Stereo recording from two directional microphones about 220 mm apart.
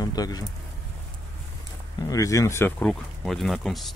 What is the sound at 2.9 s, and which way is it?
Speech, centre (ahead or behind).